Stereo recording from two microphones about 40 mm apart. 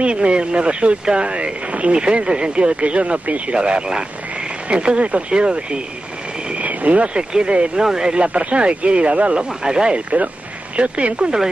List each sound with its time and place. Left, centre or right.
0.0 s speech: right
6.5 s a sound: right
7.3 s speech: right